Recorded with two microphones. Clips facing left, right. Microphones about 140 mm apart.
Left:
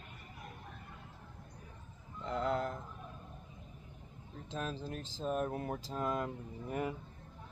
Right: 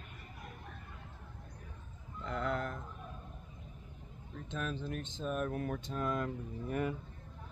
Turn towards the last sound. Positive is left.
turn(degrees=20)  # may be behind; listen again after turning